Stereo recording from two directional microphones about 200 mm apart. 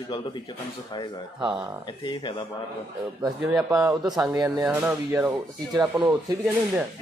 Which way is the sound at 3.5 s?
5° right (ahead or behind).